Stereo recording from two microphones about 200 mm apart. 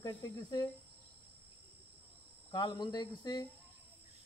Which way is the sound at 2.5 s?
20° left (ahead or behind).